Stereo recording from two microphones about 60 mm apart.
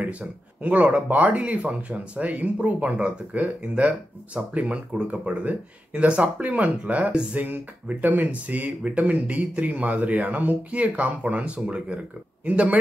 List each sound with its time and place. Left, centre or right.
0.0 s speech: right